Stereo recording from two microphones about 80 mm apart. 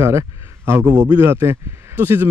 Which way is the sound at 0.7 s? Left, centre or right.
Right.